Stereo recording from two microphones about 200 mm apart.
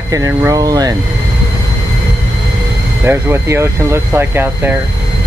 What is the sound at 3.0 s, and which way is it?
Speech, 10° right (ahead or behind).